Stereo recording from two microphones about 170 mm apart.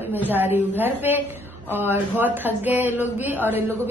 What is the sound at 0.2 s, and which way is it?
A woman's voice, 10° right (ahead or behind).